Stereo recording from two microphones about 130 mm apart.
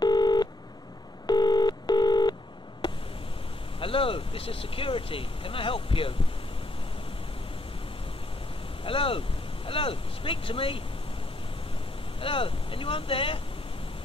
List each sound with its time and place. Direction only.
0.0 s telephone dialing: 30° left (ahead or behind)
3.8 s speech: 45° left (ahead or behind)
8.8 s speech: 45° left (ahead or behind)
12.2 s speech: 45° left (ahead or behind)